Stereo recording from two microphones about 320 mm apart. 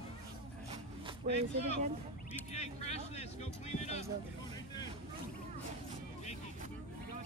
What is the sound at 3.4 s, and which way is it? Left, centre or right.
Music, centre.